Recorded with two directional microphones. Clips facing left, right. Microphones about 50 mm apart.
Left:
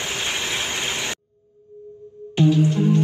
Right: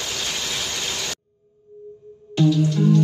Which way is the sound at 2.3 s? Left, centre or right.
Left.